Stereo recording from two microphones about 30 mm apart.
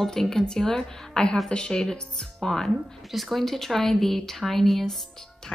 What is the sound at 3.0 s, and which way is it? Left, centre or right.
Speech, centre.